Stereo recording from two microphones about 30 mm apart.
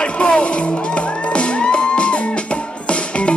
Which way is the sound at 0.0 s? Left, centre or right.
Left.